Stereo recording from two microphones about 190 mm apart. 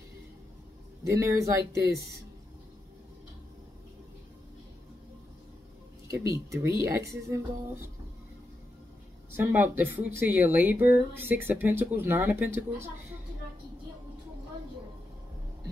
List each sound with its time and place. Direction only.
1.0 s speech: 15° right (ahead or behind)
6.0 s speech: 15° right (ahead or behind)
9.3 s speech: 10° right (ahead or behind)